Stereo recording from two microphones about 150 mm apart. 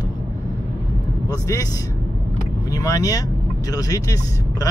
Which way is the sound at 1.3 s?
25° left (ahead or behind).